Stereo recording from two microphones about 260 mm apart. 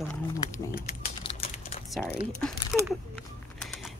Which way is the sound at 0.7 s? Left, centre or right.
Left.